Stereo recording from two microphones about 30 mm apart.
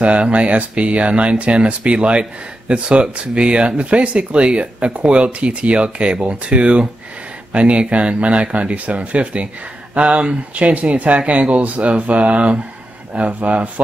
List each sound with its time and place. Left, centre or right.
0.0 s speech: right